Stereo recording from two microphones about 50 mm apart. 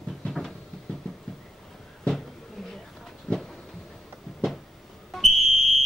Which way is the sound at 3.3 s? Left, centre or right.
Centre.